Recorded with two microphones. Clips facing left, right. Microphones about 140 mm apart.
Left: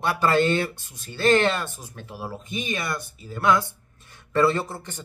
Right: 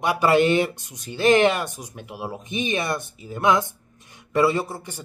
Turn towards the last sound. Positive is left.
turn(degrees=-10)  # may be behind; listen again after turning